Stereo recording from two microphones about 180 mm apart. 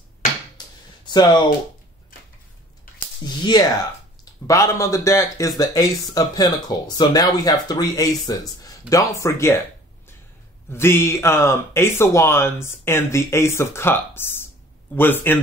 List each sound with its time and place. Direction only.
0.6 s a sound: 25° left (ahead or behind)
3.3 s speech: 20° left (ahead or behind)
10.7 s speech: 15° left (ahead or behind)